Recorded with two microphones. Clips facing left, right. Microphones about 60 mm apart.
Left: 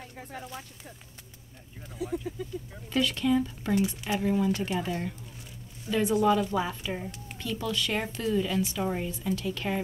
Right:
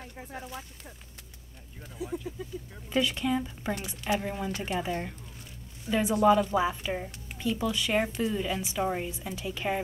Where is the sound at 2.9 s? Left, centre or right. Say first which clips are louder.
Left 2 dB; centre.